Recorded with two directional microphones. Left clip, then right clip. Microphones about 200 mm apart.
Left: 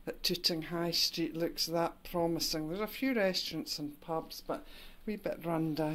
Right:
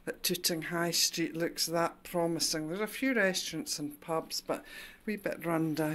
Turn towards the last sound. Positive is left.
turn(degrees=-5)  # may be behind; listen again after turning